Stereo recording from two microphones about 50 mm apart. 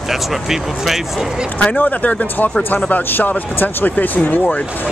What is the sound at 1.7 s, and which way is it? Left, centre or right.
Speech, left.